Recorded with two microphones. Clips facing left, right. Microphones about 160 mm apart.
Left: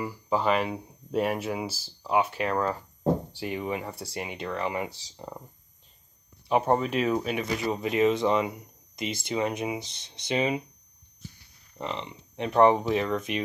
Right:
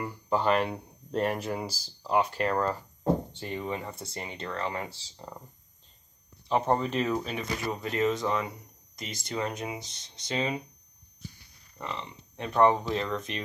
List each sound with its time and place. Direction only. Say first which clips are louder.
0.0 s speech: left 1 dB; 5° left (ahead or behind)
6.5 s speech: left 2 dB; 10° left (ahead or behind)
8.9 s speech: left 5 dB; 10° left (ahead or behind)
11.8 s speech: left 3 dB; 20° left (ahead or behind)